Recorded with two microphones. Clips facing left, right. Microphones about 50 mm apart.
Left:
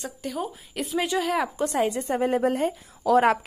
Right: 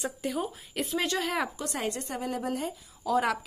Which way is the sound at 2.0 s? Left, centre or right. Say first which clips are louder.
Left 10 dB; left.